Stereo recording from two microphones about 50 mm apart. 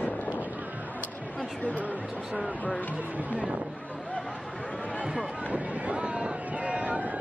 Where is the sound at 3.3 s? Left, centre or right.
Right.